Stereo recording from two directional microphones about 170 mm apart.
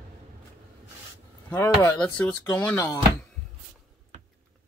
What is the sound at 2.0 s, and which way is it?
Speech, 5° left (ahead or behind).